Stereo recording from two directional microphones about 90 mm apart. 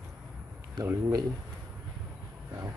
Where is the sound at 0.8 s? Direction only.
35° right (ahead or behind).